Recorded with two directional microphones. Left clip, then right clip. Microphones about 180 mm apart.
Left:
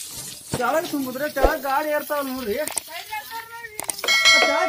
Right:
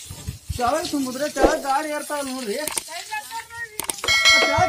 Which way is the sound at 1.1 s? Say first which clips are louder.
Right 2 dB; 50° right (ahead or behind).